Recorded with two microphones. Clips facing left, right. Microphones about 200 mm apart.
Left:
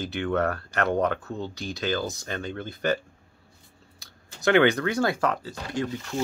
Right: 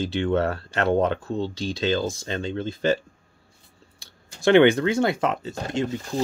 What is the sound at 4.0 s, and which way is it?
Speech, 30° right (ahead or behind).